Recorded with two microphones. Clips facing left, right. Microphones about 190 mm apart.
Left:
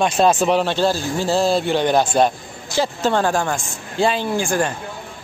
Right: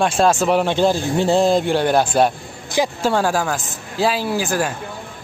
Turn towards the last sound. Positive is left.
turn(degrees=-5)  # may be behind; listen again after turning